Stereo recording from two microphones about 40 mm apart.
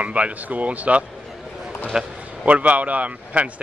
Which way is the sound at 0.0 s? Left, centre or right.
Right.